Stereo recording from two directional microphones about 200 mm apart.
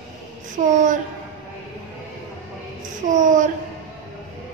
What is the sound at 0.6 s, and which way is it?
Child singing, 40° right (ahead or behind).